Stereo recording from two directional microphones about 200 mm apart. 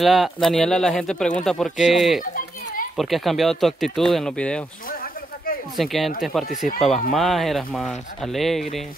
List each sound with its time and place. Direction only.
0.0 s speech: centre (ahead or behind)
2.3 s children playing: 45° left (ahead or behind)
3.0 s speech: centre (ahead or behind)
4.8 s a sound: 45° left (ahead or behind)
5.8 s speech: centre (ahead or behind)